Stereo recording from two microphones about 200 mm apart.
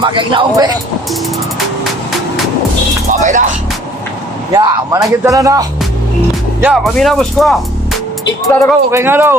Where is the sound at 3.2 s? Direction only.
40° right (ahead or behind).